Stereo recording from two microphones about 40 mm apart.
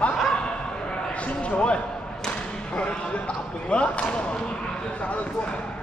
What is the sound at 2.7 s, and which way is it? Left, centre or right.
Speech, left.